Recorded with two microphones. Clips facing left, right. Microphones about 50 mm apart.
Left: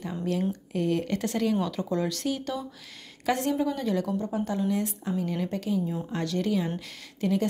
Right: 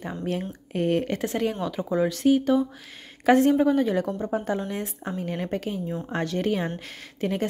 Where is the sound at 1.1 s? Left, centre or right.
Right.